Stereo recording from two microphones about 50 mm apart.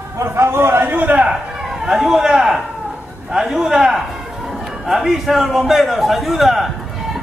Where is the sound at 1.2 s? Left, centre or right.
Centre.